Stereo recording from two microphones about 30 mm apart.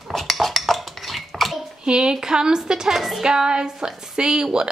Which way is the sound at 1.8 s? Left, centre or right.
Right.